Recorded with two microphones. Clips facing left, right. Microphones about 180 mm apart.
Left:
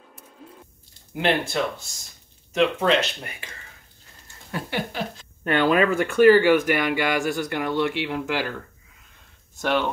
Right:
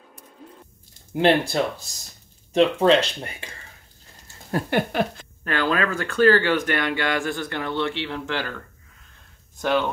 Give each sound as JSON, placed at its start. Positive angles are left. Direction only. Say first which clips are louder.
{"t": 0.1, "sound": "a sound", "louder": "right 1 dB", "side_deg": 5}
{"t": 1.1, "sound": "speech", "louder": "right 4 dB", "side_deg": -35}
{"t": 4.5, "sound": "speech", "louder": "right 6 dB", "side_deg": -45}
{"t": 5.4, "sound": "speech", "louder": "left 4 dB", "side_deg": 20}
{"t": 9.6, "sound": "speech", "louder": "right 1 dB", "side_deg": 0}